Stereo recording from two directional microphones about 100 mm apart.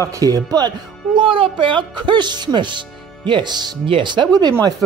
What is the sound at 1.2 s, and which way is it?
Speech, 60° right (ahead or behind).